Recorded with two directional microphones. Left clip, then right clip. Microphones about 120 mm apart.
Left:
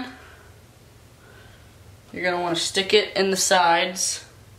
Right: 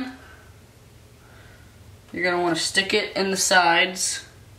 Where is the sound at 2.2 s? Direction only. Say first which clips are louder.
Right 1 dB; 10° left (ahead or behind).